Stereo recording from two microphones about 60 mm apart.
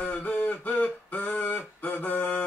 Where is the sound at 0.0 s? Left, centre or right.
Left.